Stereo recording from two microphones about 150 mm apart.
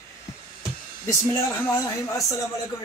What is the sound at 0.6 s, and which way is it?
A man's voice, 20° left (ahead or behind).